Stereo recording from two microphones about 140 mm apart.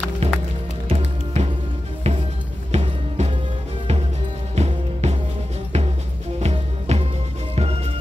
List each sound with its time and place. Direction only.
0.2 s music: 50° right (ahead or behind)
4.6 s music: 50° right (ahead or behind)
6.4 s music: 50° right (ahead or behind)